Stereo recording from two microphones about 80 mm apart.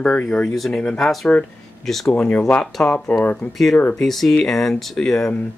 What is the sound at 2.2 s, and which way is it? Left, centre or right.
Speech, centre.